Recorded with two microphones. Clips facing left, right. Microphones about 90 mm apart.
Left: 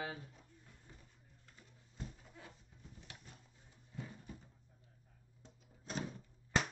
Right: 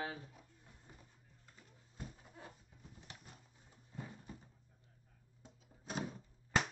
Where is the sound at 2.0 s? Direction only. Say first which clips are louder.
Left 1 dB; 10° right (ahead or behind).